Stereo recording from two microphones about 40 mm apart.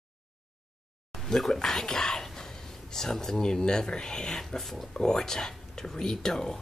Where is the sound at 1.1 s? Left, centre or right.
Centre.